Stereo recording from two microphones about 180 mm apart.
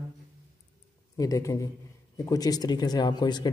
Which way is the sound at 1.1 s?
20° left (ahead or behind).